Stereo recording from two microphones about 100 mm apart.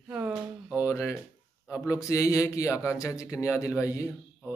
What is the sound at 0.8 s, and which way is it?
Speech, 30° left (ahead or behind).